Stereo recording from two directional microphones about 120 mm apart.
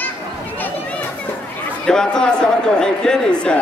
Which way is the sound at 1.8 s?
5° left (ahead or behind).